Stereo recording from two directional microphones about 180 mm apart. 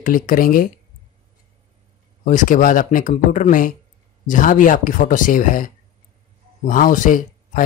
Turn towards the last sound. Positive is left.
turn(degrees=45)  # may be behind; listen again after turning